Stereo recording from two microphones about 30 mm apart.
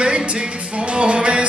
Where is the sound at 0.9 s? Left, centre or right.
Right.